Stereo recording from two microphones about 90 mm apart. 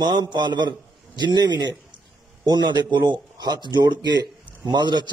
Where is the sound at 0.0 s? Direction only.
55° right (ahead or behind).